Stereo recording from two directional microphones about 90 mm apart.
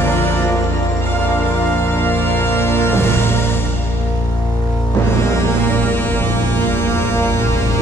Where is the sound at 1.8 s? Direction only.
25° left (ahead or behind).